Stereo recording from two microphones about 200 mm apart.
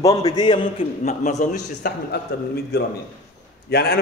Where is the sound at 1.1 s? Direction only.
35° left (ahead or behind).